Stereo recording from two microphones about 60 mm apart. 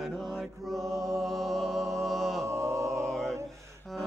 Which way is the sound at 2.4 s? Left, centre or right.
Right.